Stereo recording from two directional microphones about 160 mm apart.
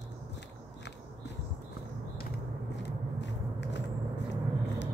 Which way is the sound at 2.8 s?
90° left.